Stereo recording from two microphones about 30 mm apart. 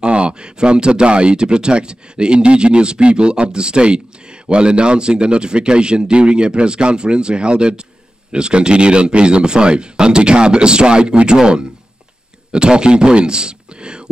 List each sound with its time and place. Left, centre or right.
0.0 s speech: right
12.5 s speech: right